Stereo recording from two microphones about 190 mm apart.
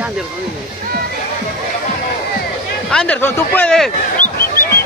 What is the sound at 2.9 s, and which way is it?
Speech, 5° left (ahead or behind).